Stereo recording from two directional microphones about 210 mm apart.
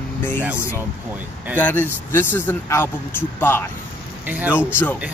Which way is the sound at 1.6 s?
10° left (ahead or behind).